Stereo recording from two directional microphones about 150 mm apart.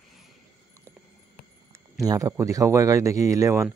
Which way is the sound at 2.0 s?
20° right (ahead or behind).